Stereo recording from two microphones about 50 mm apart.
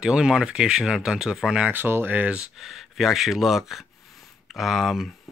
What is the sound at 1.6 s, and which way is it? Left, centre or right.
Speech, right.